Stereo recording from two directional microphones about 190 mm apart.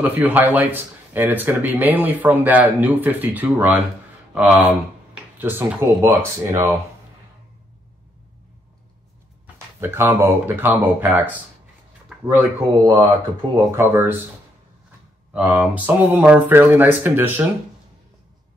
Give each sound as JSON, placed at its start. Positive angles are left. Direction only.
{"t": 0.0, "sound": "speech", "side_deg": -10}
{"t": 9.8, "sound": "speech", "side_deg": -10}
{"t": 15.3, "sound": "speech", "side_deg": -10}